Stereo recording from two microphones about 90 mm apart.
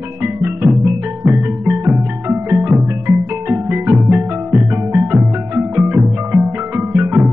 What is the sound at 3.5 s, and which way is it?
Music, 20° right (ahead or behind).